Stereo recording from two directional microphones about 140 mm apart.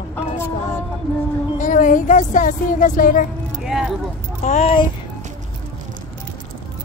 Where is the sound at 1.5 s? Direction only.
65° left (ahead or behind).